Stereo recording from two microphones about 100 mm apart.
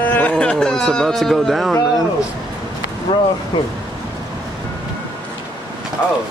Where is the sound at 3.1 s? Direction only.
45° left (ahead or behind).